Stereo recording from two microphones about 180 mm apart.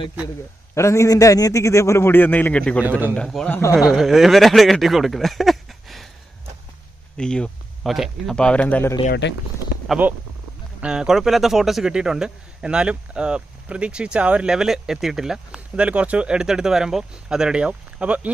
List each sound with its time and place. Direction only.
0.7 s a man's voice: 15° left (ahead or behind)
2.8 s a man's voice: 10° right (ahead or behind)
3.2 s a man's voice: 5° left (ahead or behind)
3.7 s speech: centre (ahead or behind)
7.2 s speech: 5° left (ahead or behind)
9.2 s speech: 75° left (ahead or behind)
9.8 s speech: 10° right (ahead or behind)